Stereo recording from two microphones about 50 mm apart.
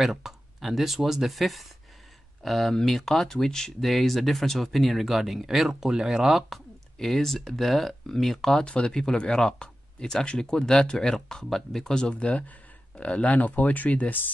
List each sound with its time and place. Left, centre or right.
0.0 s speech: centre
8.6 s speech: centre